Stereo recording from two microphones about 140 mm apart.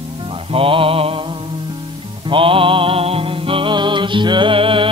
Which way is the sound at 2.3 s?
40° right (ahead or behind).